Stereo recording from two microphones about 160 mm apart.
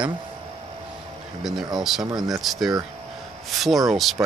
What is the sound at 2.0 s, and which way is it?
Speech, 20° right (ahead or behind).